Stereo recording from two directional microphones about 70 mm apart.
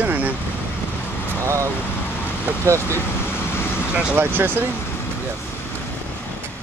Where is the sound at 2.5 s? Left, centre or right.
Right.